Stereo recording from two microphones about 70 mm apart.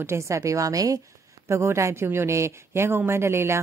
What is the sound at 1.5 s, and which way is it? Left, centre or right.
A woman's voice, right.